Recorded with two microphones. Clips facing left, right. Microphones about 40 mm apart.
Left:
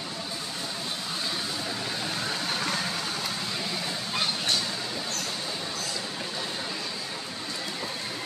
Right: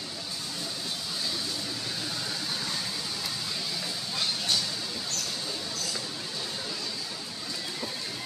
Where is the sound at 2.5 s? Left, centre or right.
Left.